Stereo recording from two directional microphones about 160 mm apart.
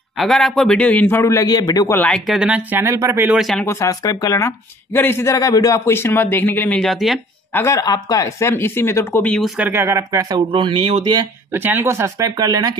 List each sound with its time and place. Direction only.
0.2 s speech: centre (ahead or behind); by 1.9 s 25° left (ahead or behind)
1.9 s speech: 10° left (ahead or behind); by 3.3 s 20° right (ahead or behind)
3.3 s speech: centre (ahead or behind)
3.6 s speech: 20° left (ahead or behind); by 7.2 s centre (ahead or behind)
7.5 s speech: 20° left (ahead or behind)
9.6 s speech: 15° right (ahead or behind); by 11.2 s 30° right (ahead or behind)
11.5 s speech: 15° right (ahead or behind)